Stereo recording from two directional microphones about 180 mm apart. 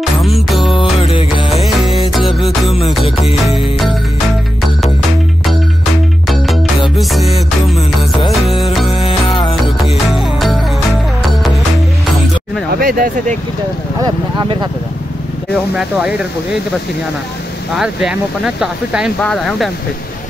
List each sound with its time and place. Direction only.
0.2 s music: centre (ahead or behind)
0.7 s music: 30° left (ahead or behind)
6.2 s music: centre (ahead or behind)
8.9 s music: 30° left (ahead or behind)
10.1 s music: centre (ahead or behind)
12.7 s speech: 50° right (ahead or behind)
14.0 s speech: 25° right (ahead or behind)
15.7 s speech: 5° right (ahead or behind)
17.7 s speech: 5° right (ahead or behind)